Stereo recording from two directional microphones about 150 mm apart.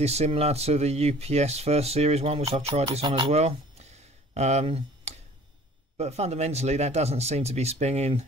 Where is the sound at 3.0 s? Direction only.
30° right (ahead or behind).